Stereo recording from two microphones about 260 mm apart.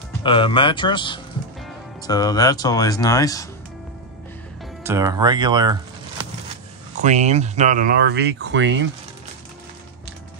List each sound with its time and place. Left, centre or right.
0.2 s speech: centre
4.8 s speech: centre
7.0 s speech: right